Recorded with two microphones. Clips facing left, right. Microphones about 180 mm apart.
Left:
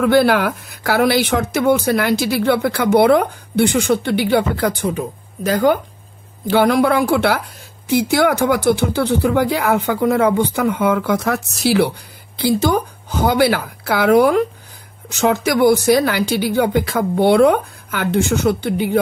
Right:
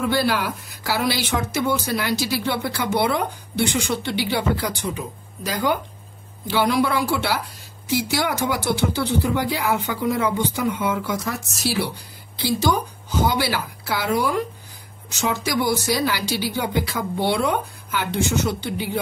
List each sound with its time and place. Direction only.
0.0 s speech: 60° left (ahead or behind)